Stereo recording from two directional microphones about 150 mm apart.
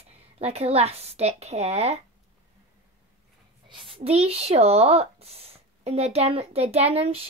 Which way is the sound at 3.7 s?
35° right (ahead or behind).